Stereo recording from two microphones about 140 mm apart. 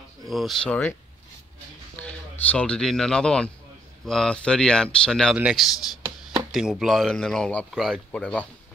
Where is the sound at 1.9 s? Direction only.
10° left (ahead or behind).